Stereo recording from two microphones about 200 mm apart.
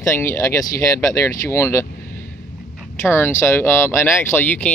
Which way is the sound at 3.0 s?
10° left (ahead or behind).